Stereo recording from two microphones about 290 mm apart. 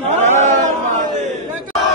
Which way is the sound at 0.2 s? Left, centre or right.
Right.